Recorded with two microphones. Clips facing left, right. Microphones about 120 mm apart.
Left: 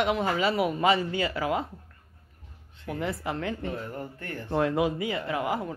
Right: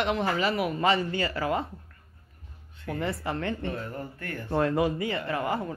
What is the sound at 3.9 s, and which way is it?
Speech, 20° left (ahead or behind).